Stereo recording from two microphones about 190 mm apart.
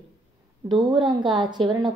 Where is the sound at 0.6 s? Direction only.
25° right (ahead or behind).